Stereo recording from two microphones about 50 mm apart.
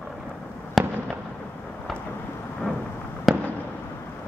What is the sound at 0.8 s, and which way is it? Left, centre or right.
Fireworks, centre.